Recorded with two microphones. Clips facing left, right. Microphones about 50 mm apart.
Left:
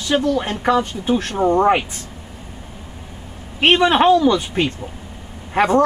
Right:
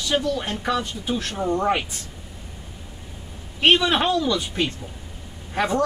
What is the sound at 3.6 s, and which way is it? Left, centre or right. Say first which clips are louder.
Speech: left 5 dB; left.